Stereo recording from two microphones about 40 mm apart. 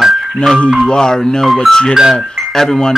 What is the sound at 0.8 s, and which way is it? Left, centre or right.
Speech, centre.